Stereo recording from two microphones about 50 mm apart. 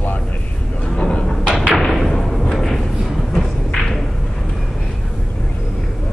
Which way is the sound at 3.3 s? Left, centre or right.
Centre.